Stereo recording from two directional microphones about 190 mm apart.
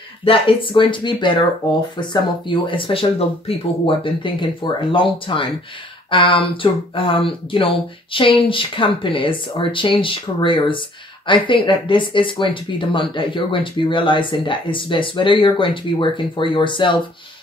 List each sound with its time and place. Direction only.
0.2 s speech: 30° left (ahead or behind)